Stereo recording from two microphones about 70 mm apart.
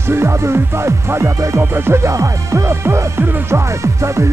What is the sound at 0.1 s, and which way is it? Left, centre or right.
Music, right.